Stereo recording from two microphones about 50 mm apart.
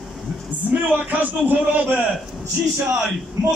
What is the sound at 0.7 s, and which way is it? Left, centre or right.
A man's voice, right.